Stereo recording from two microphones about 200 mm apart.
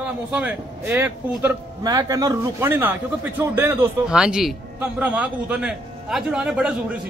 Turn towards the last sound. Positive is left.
turn(degrees=-5)  # may be behind; listen again after turning